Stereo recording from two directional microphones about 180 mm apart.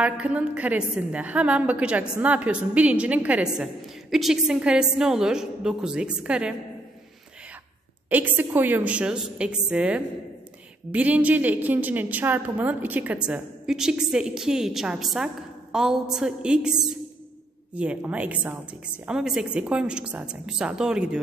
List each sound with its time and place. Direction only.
0.0 s a woman's voice: 5° right (ahead or behind)
8.1 s a woman's voice: 10° right (ahead or behind)